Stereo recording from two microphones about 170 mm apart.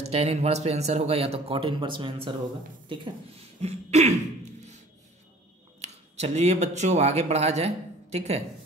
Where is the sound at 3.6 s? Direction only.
40° right (ahead or behind).